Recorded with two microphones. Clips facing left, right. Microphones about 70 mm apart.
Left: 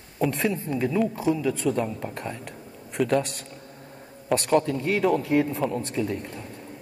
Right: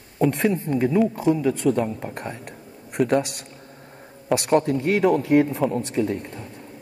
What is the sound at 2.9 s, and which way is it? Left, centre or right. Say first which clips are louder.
Speech: right 3 dB; centre.